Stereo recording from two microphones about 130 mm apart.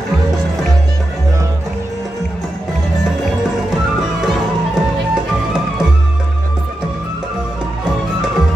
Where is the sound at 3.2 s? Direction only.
5° right (ahead or behind).